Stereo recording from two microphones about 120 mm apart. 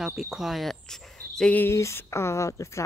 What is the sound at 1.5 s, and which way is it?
Speech, 20° left (ahead or behind).